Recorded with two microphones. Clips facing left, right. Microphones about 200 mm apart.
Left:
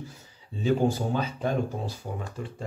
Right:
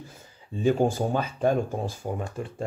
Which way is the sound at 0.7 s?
50° right (ahead or behind).